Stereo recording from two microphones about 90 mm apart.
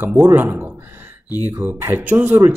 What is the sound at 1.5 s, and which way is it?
Speech, 30° right (ahead or behind).